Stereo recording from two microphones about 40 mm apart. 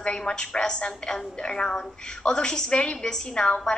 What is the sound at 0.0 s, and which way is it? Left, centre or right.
A woman's voice, left.